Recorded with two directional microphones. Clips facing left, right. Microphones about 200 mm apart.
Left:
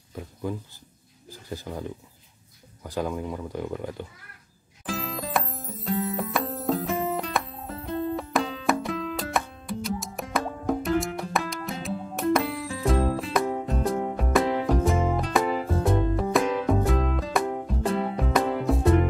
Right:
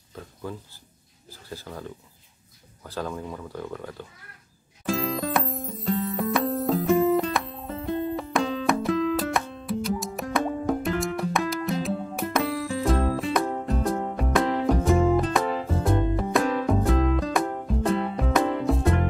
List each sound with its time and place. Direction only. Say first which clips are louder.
0.1 s speech: left 4 dB; 15° left (ahead or behind)
4.8 s music: right 6 dB; centre (ahead or behind)